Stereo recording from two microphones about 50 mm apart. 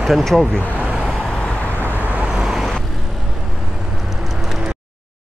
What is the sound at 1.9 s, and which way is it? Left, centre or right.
Vehicle, right.